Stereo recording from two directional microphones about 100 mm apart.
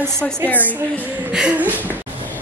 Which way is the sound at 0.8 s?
15° right (ahead or behind).